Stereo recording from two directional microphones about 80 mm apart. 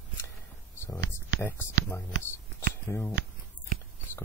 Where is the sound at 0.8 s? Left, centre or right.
Left.